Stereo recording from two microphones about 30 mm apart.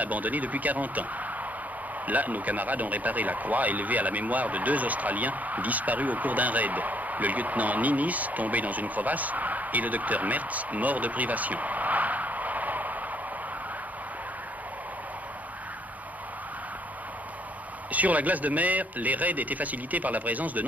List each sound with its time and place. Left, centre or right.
0.0 s speech: right
2.0 s speech: right
17.9 s speech: right